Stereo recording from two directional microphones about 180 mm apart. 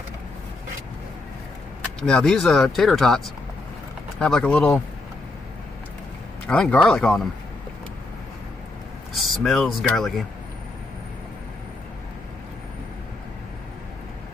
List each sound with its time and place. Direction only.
2.0 s speech: 5° left (ahead or behind)
4.2 s speech: 5° left (ahead or behind)
6.4 s speech: 5° left (ahead or behind)
9.1 s speech: centre (ahead or behind)